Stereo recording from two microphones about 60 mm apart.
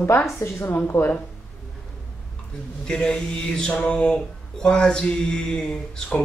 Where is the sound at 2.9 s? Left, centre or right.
Centre.